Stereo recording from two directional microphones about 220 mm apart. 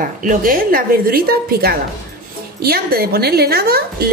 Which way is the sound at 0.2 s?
40° right (ahead or behind).